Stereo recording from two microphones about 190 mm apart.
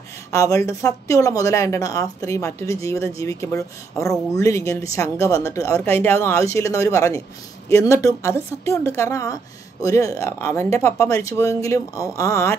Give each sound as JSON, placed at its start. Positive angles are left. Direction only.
{"t": 0.3, "sound": "speech", "side_deg": 15}